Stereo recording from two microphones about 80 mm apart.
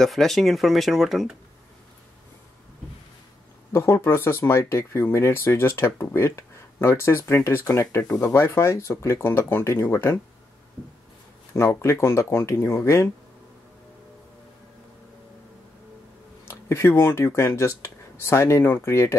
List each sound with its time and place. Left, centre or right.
0.0 s speech: centre
3.7 s speech: left
11.5 s speech: left
16.4 s speech: left